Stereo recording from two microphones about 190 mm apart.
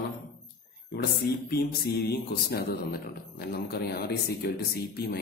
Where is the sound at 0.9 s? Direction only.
60° left (ahead or behind).